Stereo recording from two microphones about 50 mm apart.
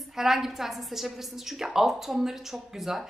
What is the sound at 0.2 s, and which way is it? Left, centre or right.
Speech, centre.